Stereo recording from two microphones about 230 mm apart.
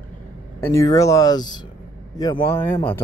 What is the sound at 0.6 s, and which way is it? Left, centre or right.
Speech, centre.